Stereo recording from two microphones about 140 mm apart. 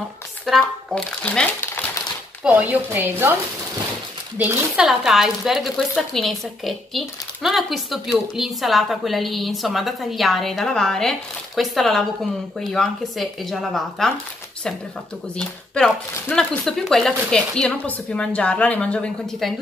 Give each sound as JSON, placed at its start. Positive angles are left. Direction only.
{"t": 0.5, "sound": "speech", "side_deg": 5}
{"t": 2.4, "sound": "speech", "side_deg": -10}
{"t": 4.4, "sound": "speech", "side_deg": -15}
{"t": 4.8, "sound": "speech", "side_deg": 0}
{"t": 15.3, "sound": "speech", "side_deg": 5}